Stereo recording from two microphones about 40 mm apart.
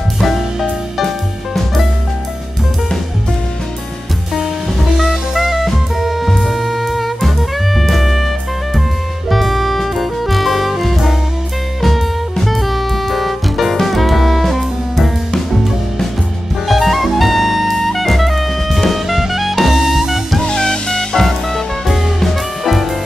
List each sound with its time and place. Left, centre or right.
0.2 s music: centre
4.7 s drum kit: centre
5.9 s music: centre
9.3 s music: centre
16.6 s music: centre
20.4 s music: centre
21.3 s music: centre